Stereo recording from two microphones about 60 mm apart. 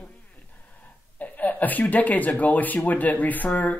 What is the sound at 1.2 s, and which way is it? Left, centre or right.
Speech, left.